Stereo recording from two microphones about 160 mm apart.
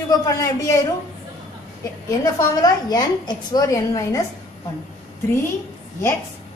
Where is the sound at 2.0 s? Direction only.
20° left (ahead or behind).